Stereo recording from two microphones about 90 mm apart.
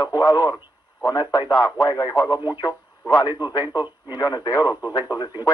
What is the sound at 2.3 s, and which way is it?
Speech, 25° right (ahead or behind).